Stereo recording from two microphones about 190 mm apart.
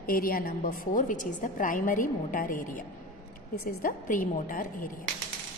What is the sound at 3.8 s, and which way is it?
A woman's voice, 45° left (ahead or behind).